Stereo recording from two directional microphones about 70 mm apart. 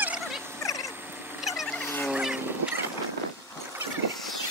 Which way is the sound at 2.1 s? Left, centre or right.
Centre.